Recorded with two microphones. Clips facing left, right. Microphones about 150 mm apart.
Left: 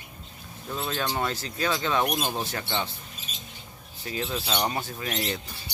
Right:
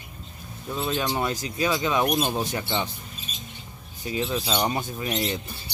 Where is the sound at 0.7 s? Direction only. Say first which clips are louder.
Right 3 dB; 5° right (ahead or behind).